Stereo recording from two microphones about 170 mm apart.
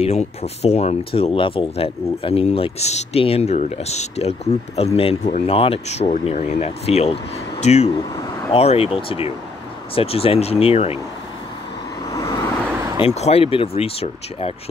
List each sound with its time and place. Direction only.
0.0 s speech: 40° left (ahead or behind)
7.9 s vehicle: 20° left (ahead or behind)
8.5 s speech: 35° left (ahead or behind)
9.9 s speech: 35° left (ahead or behind)
12.1 s vehicle: 20° left (ahead or behind)
12.6 s vehicle: 15° right (ahead or behind)
13.0 s speech: 40° left (ahead or behind)